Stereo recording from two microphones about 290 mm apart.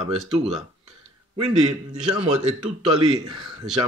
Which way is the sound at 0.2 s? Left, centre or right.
Centre.